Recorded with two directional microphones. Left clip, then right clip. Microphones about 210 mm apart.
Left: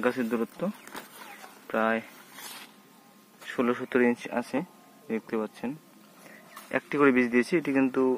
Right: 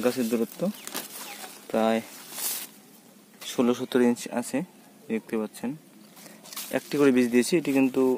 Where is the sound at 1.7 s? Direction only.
20° right (ahead or behind).